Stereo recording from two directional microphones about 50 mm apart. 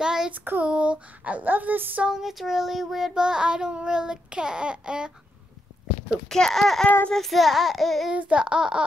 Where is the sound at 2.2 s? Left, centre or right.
Centre.